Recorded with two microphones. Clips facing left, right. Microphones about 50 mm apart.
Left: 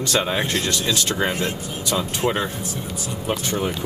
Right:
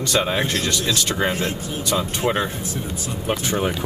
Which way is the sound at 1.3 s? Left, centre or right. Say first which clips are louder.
Right 1 dB; left.